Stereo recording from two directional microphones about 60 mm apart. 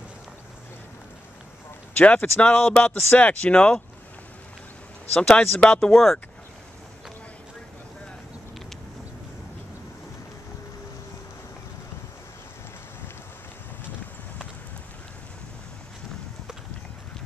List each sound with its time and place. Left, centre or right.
2.0 s speech: left
2.4 s speech: centre
5.1 s speech: centre